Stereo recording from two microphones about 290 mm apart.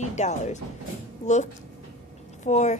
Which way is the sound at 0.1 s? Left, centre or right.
Left.